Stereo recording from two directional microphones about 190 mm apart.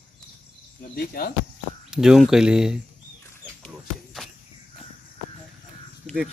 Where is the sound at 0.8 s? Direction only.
50° left (ahead or behind).